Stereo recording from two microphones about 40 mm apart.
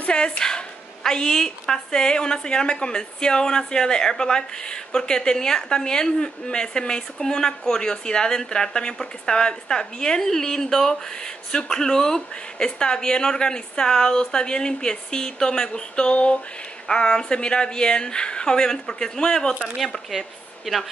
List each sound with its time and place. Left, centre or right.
0.4 s a woman's voice: centre
20.1 s speech: centre